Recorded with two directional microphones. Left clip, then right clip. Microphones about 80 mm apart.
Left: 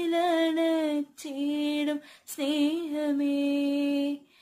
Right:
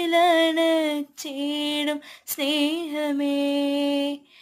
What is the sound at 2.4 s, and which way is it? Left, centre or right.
Mantra, left.